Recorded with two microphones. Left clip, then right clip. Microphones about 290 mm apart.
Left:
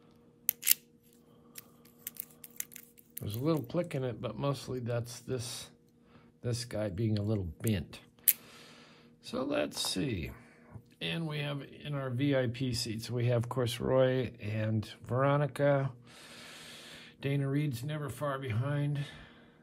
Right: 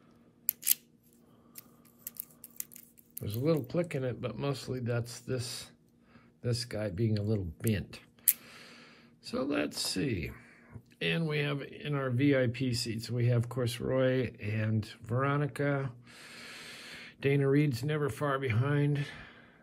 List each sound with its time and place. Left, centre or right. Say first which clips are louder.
3.2 s speech: right 2 dB; centre